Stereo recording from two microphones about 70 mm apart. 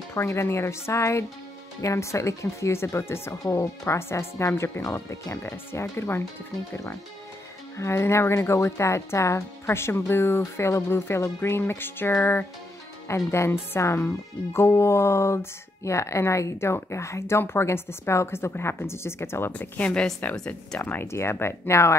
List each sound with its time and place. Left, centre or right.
0.1 s speech: left
7.7 s speech: left
13.1 s speech: left
19.5 s a woman's voice: centre
20.8 s speech: left